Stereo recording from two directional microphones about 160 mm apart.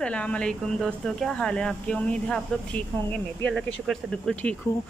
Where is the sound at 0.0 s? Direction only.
5° left (ahead or behind).